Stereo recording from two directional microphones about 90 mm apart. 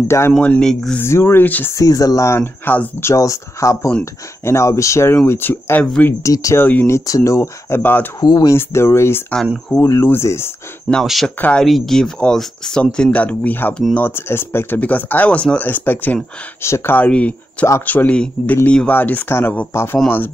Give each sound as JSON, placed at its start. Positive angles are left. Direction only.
{"t": 0.4, "sound": "speech", "side_deg": 15}
{"t": 1.0, "sound": "speech", "side_deg": 25}
{"t": 1.7, "sound": "speech", "side_deg": 40}
{"t": 2.4, "sound": "speech", "side_deg": 20}
{"t": 3.1, "sound": "speech", "side_deg": 35}
{"t": 6.2, "sound": "speech", "side_deg": 35}
{"t": 6.6, "sound": "speech", "side_deg": 20}
{"t": 6.9, "sound": "speech", "side_deg": 35}
{"t": 7.8, "sound": "speech", "side_deg": 20}
{"t": 8.2, "sound": "speech", "side_deg": 50}
{"t": 8.5, "sound": "speech", "side_deg": 30}
{"t": 10.9, "sound": "speech", "side_deg": -15}
{"t": 11.2, "sound": "speech", "side_deg": 10}